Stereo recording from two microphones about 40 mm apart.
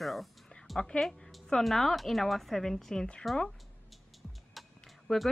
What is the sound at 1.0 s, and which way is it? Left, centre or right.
Speech, centre.